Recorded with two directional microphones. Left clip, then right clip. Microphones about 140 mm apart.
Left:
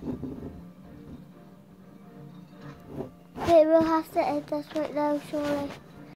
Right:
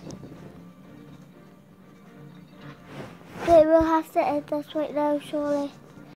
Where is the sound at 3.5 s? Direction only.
30° right (ahead or behind).